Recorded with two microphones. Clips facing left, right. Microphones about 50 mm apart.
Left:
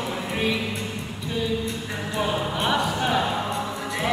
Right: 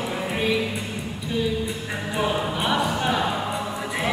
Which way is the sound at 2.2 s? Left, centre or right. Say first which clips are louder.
Right 1 dB; centre.